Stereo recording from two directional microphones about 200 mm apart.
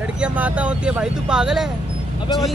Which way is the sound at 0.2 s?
5° right (ahead or behind).